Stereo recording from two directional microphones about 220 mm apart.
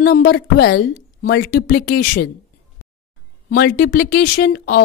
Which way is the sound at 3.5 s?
45° left (ahead or behind).